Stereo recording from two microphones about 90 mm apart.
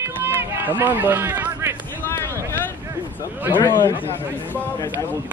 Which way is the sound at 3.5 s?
25° left (ahead or behind).